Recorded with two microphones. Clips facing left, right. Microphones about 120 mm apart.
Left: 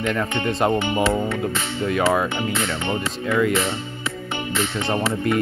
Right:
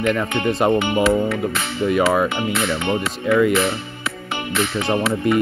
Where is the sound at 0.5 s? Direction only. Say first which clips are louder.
Right 3 dB; 5° right (ahead or behind).